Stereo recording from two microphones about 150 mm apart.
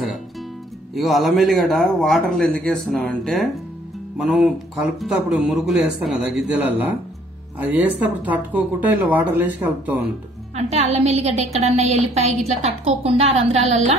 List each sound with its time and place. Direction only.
0.9 s a man's voice: centre (ahead or behind)
10.5 s a woman's voice: 45° right (ahead or behind)